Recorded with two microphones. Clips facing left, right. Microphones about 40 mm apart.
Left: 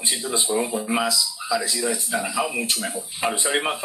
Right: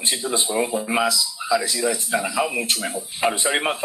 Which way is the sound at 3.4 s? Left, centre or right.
Right.